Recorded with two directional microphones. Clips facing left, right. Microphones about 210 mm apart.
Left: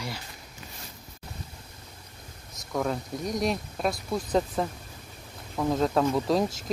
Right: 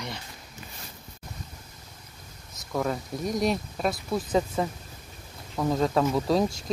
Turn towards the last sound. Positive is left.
turn(degrees=0)  # may be behind; listen again after turning